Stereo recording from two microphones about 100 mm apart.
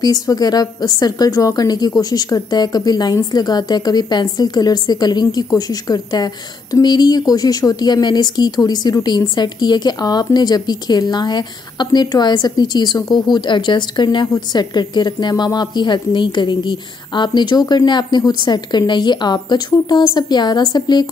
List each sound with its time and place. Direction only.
0.0 s a woman's voice: 40° left (ahead or behind)